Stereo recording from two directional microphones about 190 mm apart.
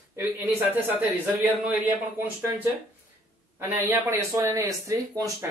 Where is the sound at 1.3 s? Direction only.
10° right (ahead or behind).